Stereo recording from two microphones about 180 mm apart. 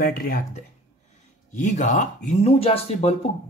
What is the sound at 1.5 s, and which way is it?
Speech, 45° left (ahead or behind).